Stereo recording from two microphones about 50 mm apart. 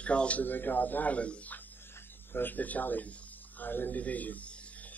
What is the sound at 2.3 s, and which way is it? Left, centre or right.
Speech, left.